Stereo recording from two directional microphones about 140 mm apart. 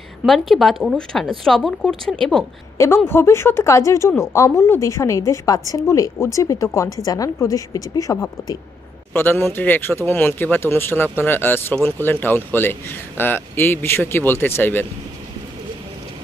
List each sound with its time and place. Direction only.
0.3 s speech: centre (ahead or behind)
3.1 s a woman's voice: 15° left (ahead or behind)